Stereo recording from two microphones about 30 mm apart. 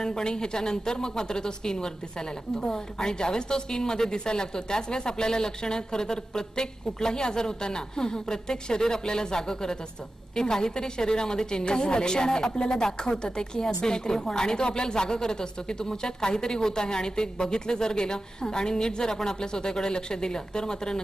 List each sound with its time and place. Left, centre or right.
0.0 s a woman's voice: left